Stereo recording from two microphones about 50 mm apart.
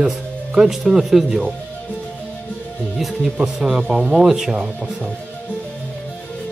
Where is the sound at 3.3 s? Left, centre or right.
Centre.